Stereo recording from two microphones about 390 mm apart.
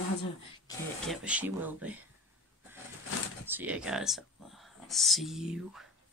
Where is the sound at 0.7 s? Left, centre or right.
Centre.